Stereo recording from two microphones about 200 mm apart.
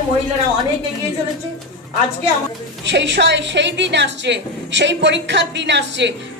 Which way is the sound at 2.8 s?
60° right (ahead or behind).